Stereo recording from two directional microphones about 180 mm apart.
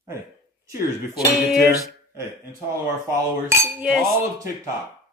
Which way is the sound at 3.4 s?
15° right (ahead or behind).